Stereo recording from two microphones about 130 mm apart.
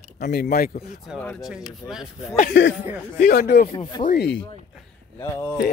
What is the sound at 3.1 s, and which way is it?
Speech, 85° left.